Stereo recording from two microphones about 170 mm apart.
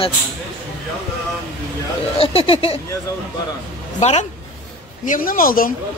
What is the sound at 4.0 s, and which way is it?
Speech, 40° left (ahead or behind).